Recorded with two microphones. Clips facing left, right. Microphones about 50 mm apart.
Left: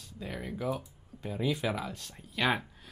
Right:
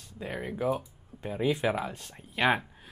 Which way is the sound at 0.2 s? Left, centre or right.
Right.